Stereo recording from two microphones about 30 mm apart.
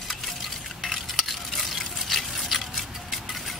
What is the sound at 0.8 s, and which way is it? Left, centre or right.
Stir, centre.